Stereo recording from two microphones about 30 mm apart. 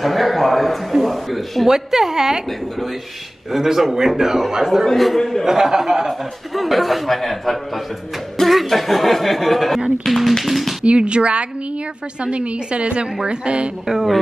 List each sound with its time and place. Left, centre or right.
0.0 s speech: centre
1.7 s a woman's voice: centre
3.5 s speech: centre
4.9 s speech: centre
5.4 s speech: centre
10.9 s a woman's voice: right
13.8 s speech: centre